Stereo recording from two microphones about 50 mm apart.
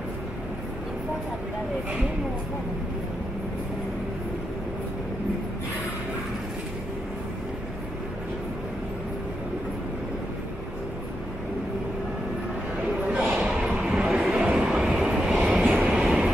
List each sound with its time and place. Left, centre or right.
13.0 s a sound: right
14.0 s vehicle: centre
14.4 s vehicle: centre
14.8 s vehicle: centre
15.0 s vehicle: centre